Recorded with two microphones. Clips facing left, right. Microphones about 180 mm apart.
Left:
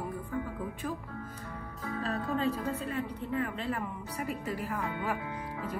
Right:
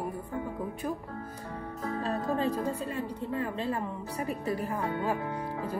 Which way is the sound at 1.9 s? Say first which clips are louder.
Right 2 dB; 35° right (ahead or behind).